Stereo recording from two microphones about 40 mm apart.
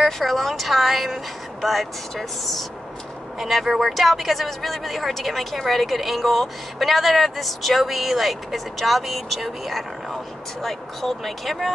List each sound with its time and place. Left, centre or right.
0.0 s speech: centre